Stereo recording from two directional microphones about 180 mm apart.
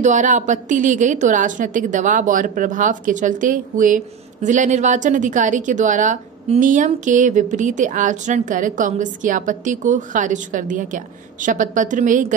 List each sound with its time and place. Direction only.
0.0 s a woman's voice: 45° right (ahead or behind)